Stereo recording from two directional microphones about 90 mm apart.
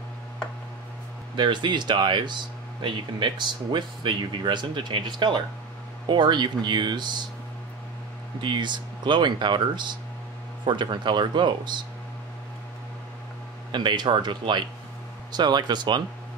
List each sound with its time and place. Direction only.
1.3 s speech: 60° right (ahead or behind)
8.4 s speech: 60° right (ahead or behind)
13.7 s speech: 60° right (ahead or behind)